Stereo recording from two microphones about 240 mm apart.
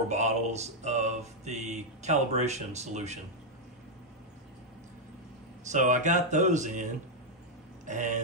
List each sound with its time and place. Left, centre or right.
0.1 s speech: right
5.7 s speech: right
7.8 s a sound: right